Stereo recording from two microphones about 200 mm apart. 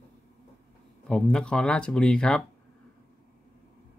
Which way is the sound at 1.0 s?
5° left (ahead or behind).